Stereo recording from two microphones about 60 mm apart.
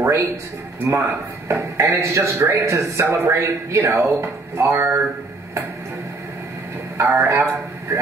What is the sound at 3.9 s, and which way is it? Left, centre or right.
Speech, right.